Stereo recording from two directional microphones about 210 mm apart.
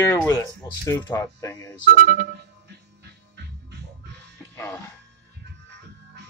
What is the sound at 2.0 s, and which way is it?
Speech, 40° right (ahead or behind).